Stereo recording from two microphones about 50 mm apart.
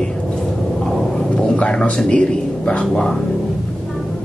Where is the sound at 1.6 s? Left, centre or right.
Left.